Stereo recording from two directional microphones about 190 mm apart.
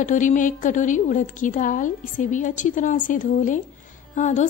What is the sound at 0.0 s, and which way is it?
A woman's voice, 40° left (ahead or behind).